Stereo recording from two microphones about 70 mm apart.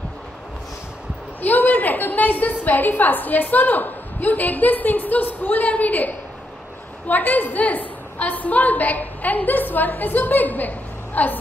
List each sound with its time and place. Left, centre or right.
1.4 s a woman's voice: left